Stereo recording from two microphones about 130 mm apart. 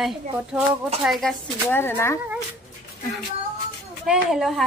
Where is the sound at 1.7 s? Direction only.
15° left (ahead or behind).